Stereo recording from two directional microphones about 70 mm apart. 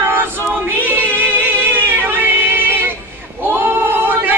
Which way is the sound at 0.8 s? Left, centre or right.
Right.